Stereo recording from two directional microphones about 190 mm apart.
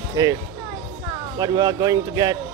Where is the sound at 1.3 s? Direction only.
20° right (ahead or behind).